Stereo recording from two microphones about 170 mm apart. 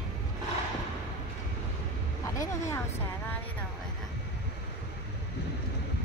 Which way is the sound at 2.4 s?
15° left (ahead or behind).